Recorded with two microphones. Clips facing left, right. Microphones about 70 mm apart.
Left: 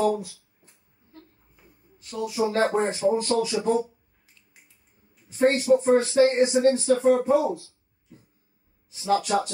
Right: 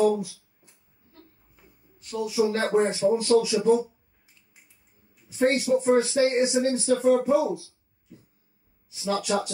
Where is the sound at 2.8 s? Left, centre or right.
Left.